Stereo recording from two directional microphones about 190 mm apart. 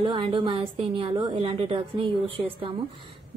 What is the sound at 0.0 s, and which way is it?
A woman's voice, 25° right (ahead or behind).